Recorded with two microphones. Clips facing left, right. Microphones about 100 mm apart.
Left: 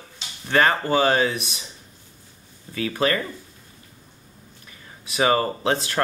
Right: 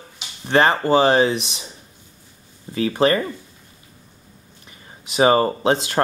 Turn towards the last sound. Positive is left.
turn(degrees=-25)  # may be behind; listen again after turning